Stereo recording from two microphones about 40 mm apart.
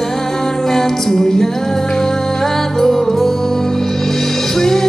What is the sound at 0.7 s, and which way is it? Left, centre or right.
Music, centre.